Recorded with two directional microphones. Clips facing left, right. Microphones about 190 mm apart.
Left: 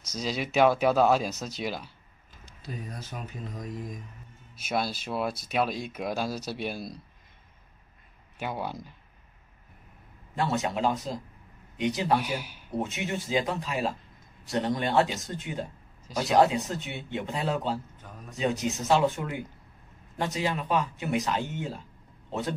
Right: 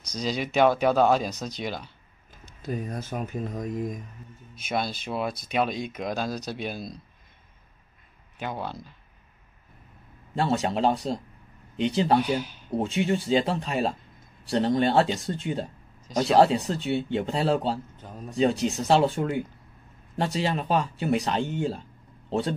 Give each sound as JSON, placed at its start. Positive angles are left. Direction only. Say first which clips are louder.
{"t": 0.0, "sound": "speech", "louder": "right 2 dB", "side_deg": 5}
{"t": 2.6, "sound": "speech", "louder": "right 8 dB", "side_deg": -50}
{"t": 4.6, "sound": "speech", "louder": "right 1 dB", "side_deg": 5}
{"t": 8.4, "sound": "speech", "louder": "even", "side_deg": 10}
{"t": 10.3, "sound": "speech", "louder": "right 3 dB", "side_deg": -30}
{"t": 12.2, "sound": "speech", "louder": "right 7 dB", "side_deg": 10}
{"t": 12.7, "sound": "speech", "louder": "right 6 dB", "side_deg": -30}